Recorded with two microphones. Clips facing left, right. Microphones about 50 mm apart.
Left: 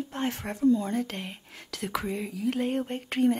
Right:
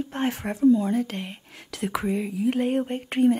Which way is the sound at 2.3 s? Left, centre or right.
Right.